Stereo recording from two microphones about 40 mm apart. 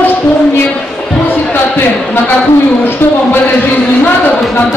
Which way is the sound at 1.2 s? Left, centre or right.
Left.